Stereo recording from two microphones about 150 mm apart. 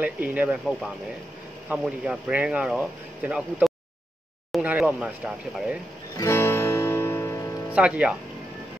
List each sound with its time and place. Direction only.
0.0 s speech: 10° right (ahead or behind)
6.1 s music: 15° left (ahead or behind)
7.7 s speech: 10° right (ahead or behind)